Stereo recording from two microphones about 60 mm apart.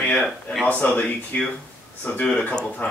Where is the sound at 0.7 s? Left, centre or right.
Left.